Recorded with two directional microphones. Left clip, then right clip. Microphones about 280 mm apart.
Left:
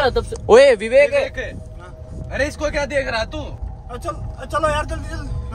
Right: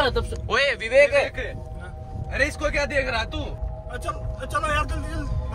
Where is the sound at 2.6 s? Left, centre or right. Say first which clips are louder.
Left 3 dB; left.